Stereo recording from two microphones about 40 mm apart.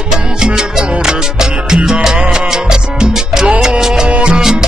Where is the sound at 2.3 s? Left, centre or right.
Centre.